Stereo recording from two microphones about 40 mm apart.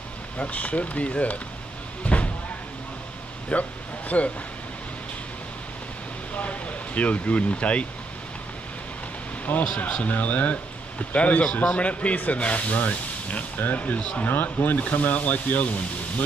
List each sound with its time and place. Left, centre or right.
0.4 s speech: left
2.1 s a sound: left
3.5 s speech: left
6.3 s speech: left
9.8 s speech: left
13.9 s speech: left
14.2 s speech: left